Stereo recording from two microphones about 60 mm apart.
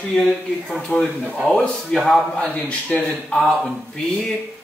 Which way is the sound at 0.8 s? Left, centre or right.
Centre.